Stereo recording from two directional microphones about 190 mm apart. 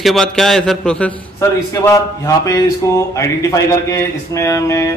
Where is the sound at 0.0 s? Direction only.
Centre (ahead or behind).